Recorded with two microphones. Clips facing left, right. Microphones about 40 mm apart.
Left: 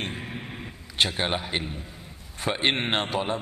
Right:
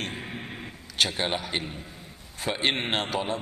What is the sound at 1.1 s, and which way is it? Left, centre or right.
Speech, centre.